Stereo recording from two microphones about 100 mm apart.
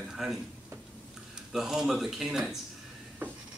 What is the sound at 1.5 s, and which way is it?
A man's voice, 5° right (ahead or behind).